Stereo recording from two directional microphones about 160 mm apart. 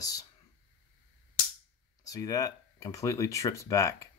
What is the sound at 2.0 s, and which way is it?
Speech, 20° left (ahead or behind).